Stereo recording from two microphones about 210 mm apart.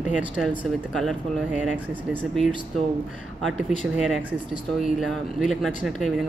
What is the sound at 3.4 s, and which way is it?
Speech, centre (ahead or behind).